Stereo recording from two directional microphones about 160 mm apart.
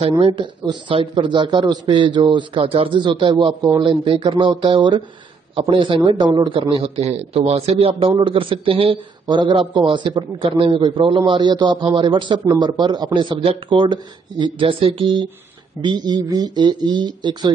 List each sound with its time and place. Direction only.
0.2 s a man's voice: 30° right (ahead or behind)